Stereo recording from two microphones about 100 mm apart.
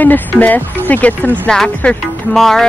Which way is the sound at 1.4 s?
10° left (ahead or behind).